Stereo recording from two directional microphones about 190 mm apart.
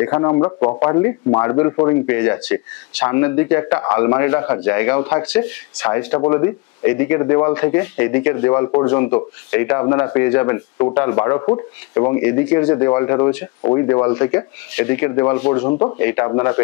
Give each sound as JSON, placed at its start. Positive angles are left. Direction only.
{"t": 0.0, "sound": "speech", "side_deg": 20}
{"t": 15.6, "sound": "speech", "side_deg": 20}